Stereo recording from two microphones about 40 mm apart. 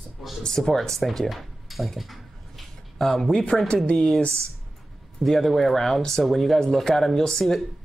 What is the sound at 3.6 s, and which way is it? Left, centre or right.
Speech, left.